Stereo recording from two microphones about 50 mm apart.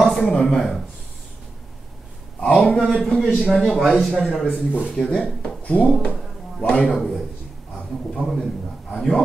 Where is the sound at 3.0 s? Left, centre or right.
Centre.